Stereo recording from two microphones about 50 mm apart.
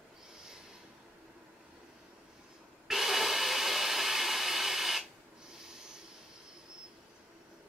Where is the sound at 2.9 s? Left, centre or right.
Centre.